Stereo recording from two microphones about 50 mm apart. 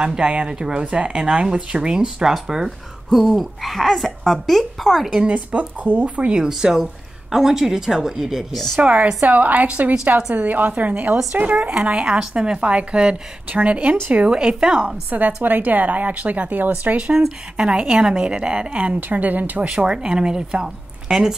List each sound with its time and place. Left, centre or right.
0.0 s speech: right; by 5.1 s centre
5.3 s speech: right; by 8.5 s centre
8.9 s speech: right
15.0 s speech: right
17.6 s speech: right
19.7 s speech: centre